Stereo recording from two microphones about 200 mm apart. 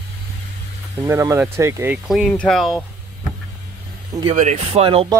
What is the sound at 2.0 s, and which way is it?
Speech, centre (ahead or behind).